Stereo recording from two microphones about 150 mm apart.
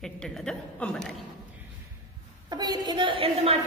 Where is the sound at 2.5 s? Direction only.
25° right (ahead or behind).